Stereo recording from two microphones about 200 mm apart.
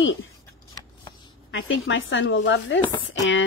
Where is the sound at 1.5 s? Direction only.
85° left; by 3.4 s 70° left (ahead or behind).